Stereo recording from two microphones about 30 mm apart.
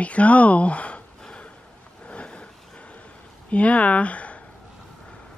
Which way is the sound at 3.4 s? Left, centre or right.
Left.